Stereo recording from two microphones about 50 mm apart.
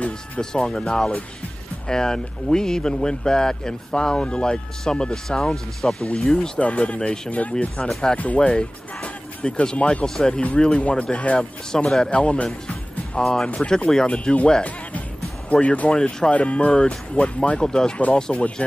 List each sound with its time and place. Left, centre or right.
0.4 s speech: centre
6.5 s speech: left
8.2 s speech: left
8.5 s speech: centre
10.0 s speech: centre
10.6 s speech: left
13.2 s speech: centre; by 15.9 s left
15.9 s speech: centre
16.3 s speech: left